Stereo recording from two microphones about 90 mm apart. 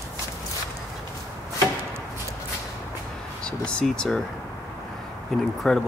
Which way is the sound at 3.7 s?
10° left (ahead or behind).